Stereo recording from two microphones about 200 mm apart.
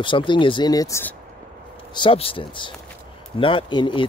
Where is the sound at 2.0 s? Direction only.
25° left (ahead or behind).